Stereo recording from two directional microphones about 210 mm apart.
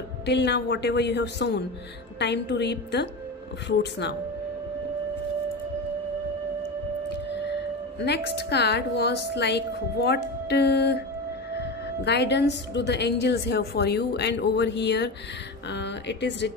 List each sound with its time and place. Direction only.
0.3 s a woman's voice: 55° left (ahead or behind)
8.0 s a woman's voice: 50° left (ahead or behind)